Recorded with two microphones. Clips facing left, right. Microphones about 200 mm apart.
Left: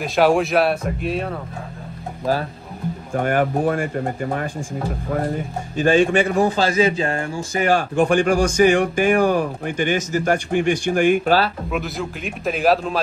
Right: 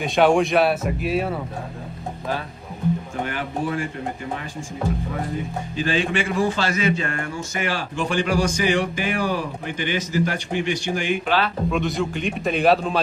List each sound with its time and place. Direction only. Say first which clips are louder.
0.0 s speech: left 1 dB; centre (ahead or behind)
3.3 s speech: left 9 dB; 50° left (ahead or behind)
5.8 s a man's voice: left 7 dB; 45° left (ahead or behind)
7.7 s speech: left 9 dB; 50° left (ahead or behind)
11.7 s speech: right 2 dB; centre (ahead or behind)